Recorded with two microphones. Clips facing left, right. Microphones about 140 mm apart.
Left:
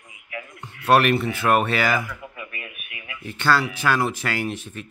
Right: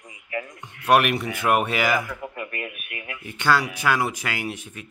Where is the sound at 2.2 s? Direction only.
45° right (ahead or behind).